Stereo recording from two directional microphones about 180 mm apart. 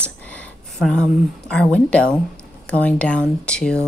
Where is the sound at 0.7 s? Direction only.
Centre (ahead or behind).